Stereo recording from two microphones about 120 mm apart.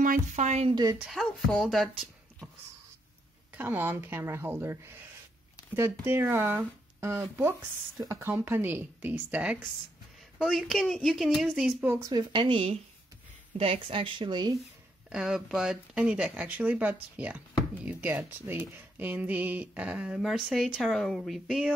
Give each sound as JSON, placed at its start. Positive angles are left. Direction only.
{"t": 0.0, "sound": "speech", "side_deg": -90}
{"t": 0.9, "sound": "speech", "side_deg": 0}
{"t": 3.5, "sound": "a woman's voice", "side_deg": -15}
{"t": 12.1, "sound": "speech", "side_deg": -40}
{"t": 15.0, "sound": "speech", "side_deg": -5}